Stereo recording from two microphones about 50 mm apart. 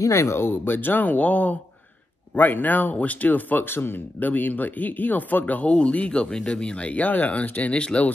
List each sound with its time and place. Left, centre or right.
0.1 s speech: left
0.4 s speech: left
3.6 s speech: left